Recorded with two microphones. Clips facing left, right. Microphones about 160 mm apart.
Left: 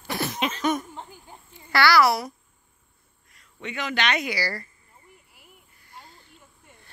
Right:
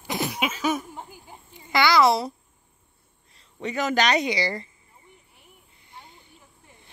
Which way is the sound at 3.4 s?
35° right (ahead or behind).